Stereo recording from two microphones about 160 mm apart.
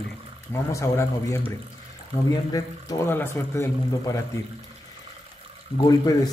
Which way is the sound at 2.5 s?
15° left (ahead or behind).